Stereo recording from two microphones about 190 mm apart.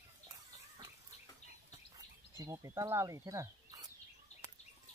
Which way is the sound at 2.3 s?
15° right (ahead or behind).